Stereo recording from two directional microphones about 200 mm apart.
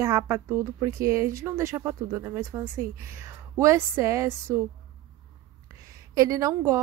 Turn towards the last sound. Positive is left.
turn(degrees=-15)  # may be behind; listen again after turning